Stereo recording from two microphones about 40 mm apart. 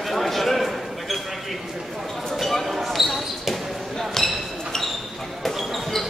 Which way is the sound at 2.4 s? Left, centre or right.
Centre.